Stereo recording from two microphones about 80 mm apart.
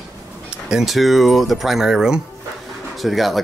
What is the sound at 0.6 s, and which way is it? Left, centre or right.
Speech, centre.